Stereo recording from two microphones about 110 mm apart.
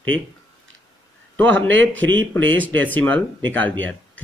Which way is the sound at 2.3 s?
15° left (ahead or behind).